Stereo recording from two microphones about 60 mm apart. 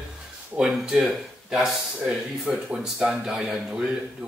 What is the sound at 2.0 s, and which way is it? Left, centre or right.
Speech, centre.